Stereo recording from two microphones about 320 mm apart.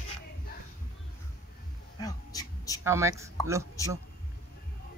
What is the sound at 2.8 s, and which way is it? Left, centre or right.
Speech, centre.